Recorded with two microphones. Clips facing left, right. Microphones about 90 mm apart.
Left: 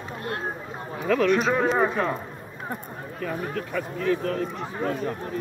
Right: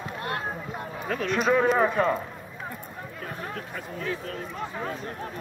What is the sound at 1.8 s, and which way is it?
Speech, 5° left (ahead or behind).